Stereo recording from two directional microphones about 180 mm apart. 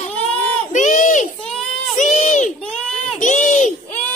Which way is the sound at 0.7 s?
45° left (ahead or behind).